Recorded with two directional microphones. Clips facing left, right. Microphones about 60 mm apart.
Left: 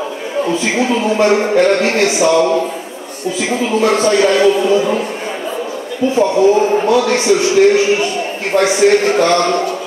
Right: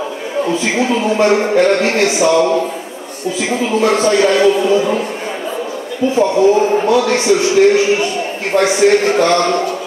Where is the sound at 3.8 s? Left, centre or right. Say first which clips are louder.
Even; right.